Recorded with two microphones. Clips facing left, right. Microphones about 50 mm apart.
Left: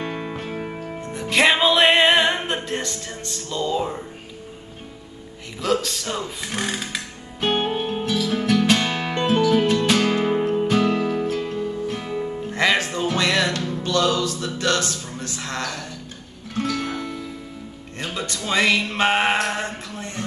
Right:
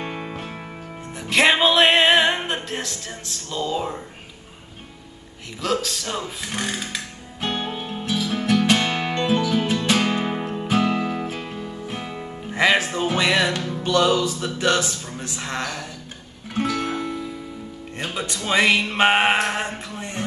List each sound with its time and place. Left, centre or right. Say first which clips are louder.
0.0 s music: left 2 dB; centre
0.3 s music: left 4 dB; centre
5.6 s speech: left 2 dB; centre
7.7 s music: left 6 dB; centre
8.0 s music: left 2 dB; centre